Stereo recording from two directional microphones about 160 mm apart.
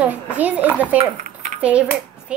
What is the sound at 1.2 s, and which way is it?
Cutlery, 60° right (ahead or behind).